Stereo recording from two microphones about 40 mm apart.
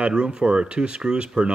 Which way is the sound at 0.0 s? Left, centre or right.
Right.